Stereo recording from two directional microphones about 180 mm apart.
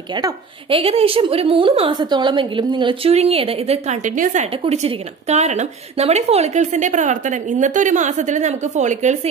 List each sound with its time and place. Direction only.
0.1 s a woman's voice: 25° right (ahead or behind)